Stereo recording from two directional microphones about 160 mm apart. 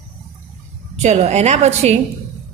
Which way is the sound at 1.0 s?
45° right (ahead or behind).